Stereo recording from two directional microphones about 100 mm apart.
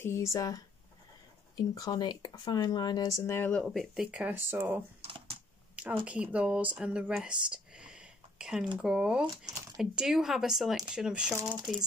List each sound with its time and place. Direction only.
0.0 s speech: 30° left (ahead or behind)
1.8 s speech: 45° left (ahead or behind); by 3.5 s 25° left (ahead or behind)
3.5 s speech: centre (ahead or behind)
4.4 s speech: 20° right (ahead or behind); by 11.8 s 5° right (ahead or behind)